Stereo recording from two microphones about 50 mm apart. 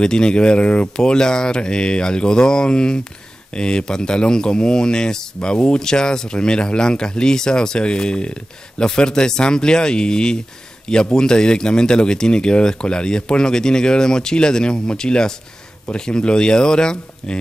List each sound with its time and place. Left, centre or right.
0.0 s speech: centre